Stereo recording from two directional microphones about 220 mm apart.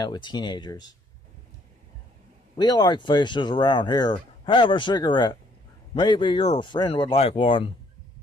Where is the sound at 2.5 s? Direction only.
20° left (ahead or behind).